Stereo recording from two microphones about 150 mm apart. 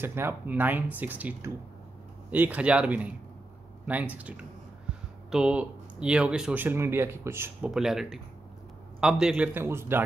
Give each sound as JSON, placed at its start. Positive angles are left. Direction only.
{"t": 0.0, "sound": "speech", "side_deg": -15}
{"t": 7.7, "sound": "speech", "side_deg": -5}